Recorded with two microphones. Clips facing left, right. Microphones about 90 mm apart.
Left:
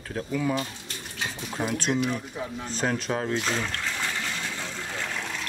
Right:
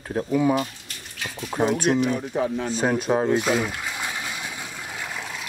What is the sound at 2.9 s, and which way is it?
Speech, 20° right (ahead or behind).